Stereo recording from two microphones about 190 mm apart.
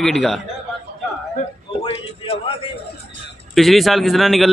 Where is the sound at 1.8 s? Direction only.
30° left (ahead or behind).